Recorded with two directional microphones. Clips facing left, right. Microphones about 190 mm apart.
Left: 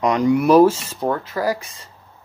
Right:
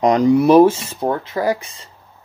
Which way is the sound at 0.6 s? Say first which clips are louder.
Right 2 dB; 15° right (ahead or behind).